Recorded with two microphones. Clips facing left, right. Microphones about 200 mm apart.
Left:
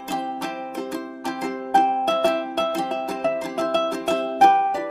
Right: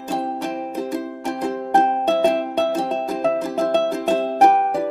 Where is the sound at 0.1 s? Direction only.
30° right (ahead or behind).